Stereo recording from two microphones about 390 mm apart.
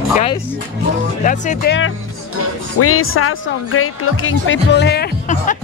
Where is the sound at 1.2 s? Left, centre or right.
Centre.